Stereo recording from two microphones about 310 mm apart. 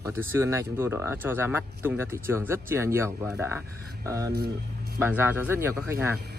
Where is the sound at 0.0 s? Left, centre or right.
Centre.